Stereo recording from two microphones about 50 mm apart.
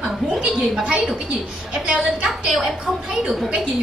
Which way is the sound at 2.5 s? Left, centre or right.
Centre.